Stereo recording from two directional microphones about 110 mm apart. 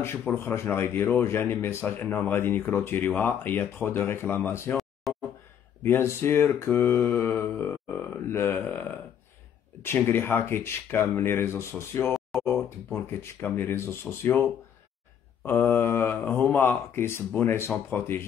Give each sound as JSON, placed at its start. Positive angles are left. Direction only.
{"t": 0.3, "sound": "speech", "side_deg": 15}
{"t": 5.1, "sound": "a sound", "side_deg": 0}
{"t": 5.9, "sound": "speech", "side_deg": 20}
{"t": 12.3, "sound": "a sound", "side_deg": 0}
{"t": 12.6, "sound": "speech", "side_deg": 20}
{"t": 15.4, "sound": "speech", "side_deg": 20}